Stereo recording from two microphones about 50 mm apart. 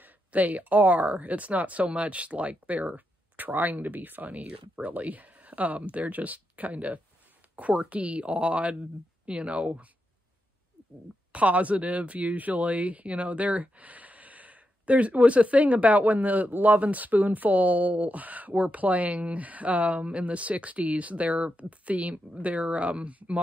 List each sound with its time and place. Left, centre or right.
0.0 s speech: right
11.3 s speech: right